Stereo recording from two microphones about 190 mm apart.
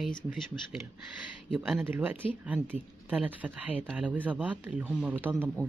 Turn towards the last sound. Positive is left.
turn(degrees=-5)  # may be behind; listen again after turning